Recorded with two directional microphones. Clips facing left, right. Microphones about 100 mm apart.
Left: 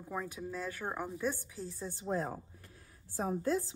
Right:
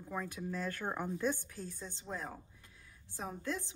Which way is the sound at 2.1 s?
40° left (ahead or behind).